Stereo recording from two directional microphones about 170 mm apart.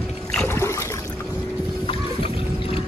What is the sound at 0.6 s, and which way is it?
Trickle, 15° left (ahead or behind).